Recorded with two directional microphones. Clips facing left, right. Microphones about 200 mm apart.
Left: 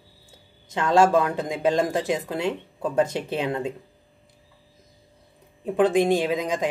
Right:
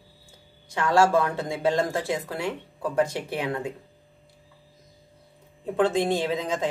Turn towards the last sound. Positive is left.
turn(degrees=15)  # may be behind; listen again after turning